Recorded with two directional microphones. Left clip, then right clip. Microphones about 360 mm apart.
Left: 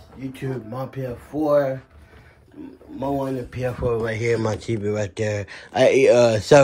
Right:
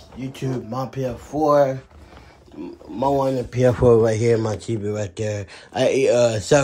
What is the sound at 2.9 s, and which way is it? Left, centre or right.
Speech, centre.